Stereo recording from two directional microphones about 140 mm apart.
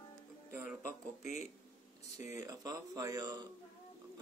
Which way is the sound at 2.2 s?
25° right (ahead or behind).